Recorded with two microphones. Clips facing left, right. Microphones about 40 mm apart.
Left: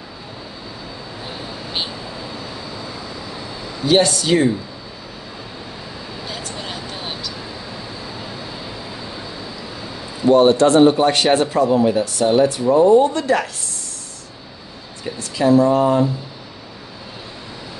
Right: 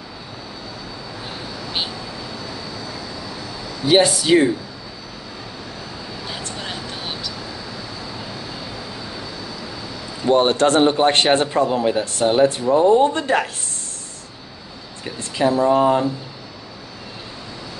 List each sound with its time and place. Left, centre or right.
3.8 s speech: centre
6.2 s a sound: centre
7.1 s vehicle: centre
10.2 s speech: right
15.1 s speech: right